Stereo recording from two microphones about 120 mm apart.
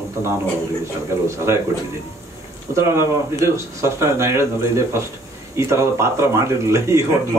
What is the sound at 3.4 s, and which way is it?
Speech, 25° right (ahead or behind).